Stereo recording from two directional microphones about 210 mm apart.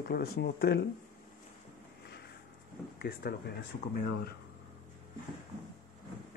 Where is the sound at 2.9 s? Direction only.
50° left (ahead or behind).